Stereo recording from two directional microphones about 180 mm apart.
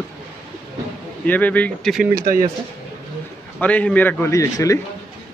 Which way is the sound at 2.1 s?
50° right (ahead or behind).